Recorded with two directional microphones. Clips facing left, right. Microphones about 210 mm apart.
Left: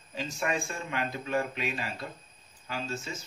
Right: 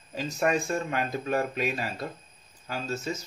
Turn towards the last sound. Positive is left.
turn(degrees=-40)  # may be behind; listen again after turning